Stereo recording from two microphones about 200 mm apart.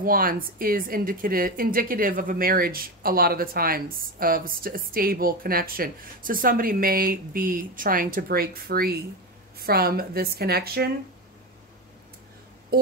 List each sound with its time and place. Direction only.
0.0 s a woman's voice: 45° right (ahead or behind)